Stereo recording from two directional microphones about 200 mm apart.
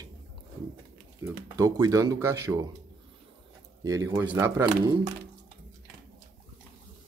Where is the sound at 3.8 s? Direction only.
15° right (ahead or behind).